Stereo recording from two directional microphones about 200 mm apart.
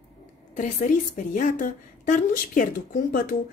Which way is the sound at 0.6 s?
40° left (ahead or behind).